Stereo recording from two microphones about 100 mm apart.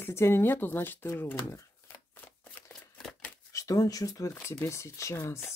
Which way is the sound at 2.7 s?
Centre (ahead or behind).